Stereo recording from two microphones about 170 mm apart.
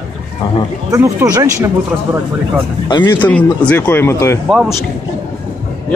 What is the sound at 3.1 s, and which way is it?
A man's voice, 10° left (ahead or behind).